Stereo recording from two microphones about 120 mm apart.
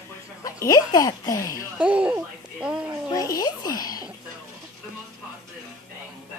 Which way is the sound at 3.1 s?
35° left (ahead or behind).